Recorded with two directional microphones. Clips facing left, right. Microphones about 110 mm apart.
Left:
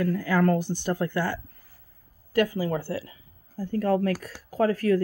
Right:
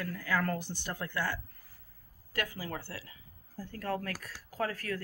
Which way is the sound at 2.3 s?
20° left (ahead or behind).